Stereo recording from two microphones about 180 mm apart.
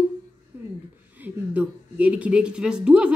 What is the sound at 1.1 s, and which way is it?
A woman's voice, 10° right (ahead or behind).